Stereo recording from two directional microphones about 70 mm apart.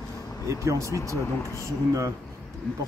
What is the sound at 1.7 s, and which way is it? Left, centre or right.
Speech, right.